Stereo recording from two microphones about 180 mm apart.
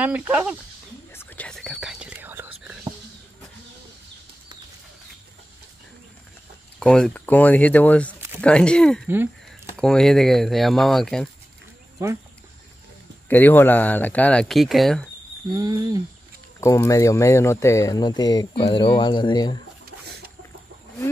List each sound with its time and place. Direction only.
0.0 s speech: 10° right (ahead or behind)
1.1 s whispering: 10° left (ahead or behind); by 2.8 s 10° right (ahead or behind)
6.8 s speech: 5° left (ahead or behind)
9.0 s speech: 10° right (ahead or behind)
9.8 s speech: 5° left (ahead or behind)
13.3 s speech: 10° left (ahead or behind)
15.5 s speech: 20° right (ahead or behind)
16.5 s speech: 15° left (ahead or behind)